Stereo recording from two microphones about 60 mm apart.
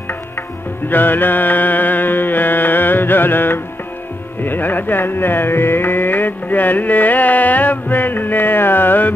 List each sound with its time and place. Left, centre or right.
0.8 s music: left
4.4 s carnatic music: left